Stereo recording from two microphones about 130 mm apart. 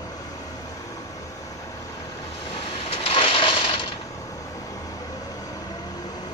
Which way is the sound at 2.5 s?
45° left (ahead or behind).